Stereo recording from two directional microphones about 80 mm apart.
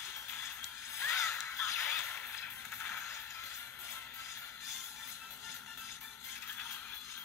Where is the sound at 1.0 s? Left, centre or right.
Left.